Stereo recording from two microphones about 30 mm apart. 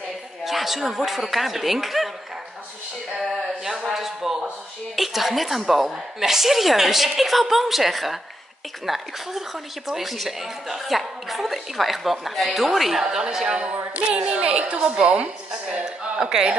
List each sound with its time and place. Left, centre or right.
0.5 s speech: centre
3.2 s a sound: centre
4.9 s a woman's voice: centre
13.0 s speech: centre
13.5 s a woman's voice: right
15.0 s a woman's voice: right
15.8 s a sound: right